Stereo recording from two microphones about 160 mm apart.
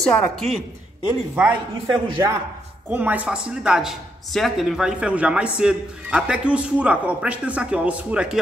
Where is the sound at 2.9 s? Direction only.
10° right (ahead or behind).